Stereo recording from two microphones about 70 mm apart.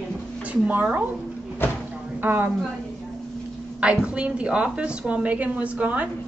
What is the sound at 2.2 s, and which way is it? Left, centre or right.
Speech, right.